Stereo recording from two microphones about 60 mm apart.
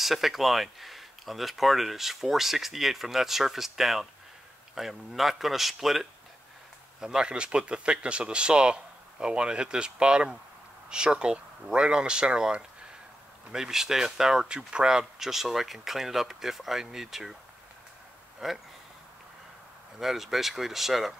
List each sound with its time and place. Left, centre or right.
0.0 s speech: centre
18.4 s speech: centre
20.0 s speech: centre